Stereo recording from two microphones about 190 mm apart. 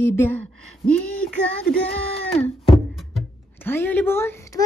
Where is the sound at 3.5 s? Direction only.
10° left (ahead or behind).